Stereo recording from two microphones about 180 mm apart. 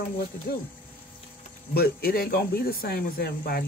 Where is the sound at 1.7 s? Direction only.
60° left (ahead or behind).